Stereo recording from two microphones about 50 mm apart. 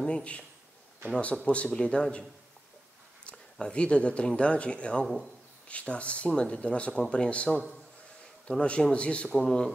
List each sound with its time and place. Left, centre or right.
0.0 s speech: left
3.3 s speech: centre